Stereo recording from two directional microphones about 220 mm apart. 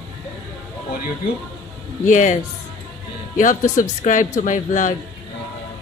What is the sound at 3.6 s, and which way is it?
Speech, 15° left (ahead or behind).